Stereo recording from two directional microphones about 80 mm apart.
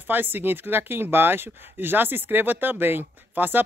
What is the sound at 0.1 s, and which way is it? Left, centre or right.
Speech, right.